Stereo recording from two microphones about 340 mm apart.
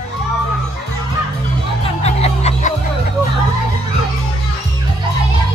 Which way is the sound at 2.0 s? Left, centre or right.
Centre.